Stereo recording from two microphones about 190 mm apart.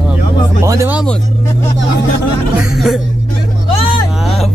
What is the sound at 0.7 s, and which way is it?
Speech, 10° right (ahead or behind).